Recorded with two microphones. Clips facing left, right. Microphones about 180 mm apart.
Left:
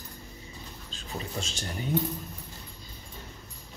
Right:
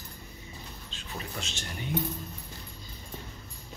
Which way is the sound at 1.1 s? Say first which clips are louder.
Left 3 dB; 35° left (ahead or behind).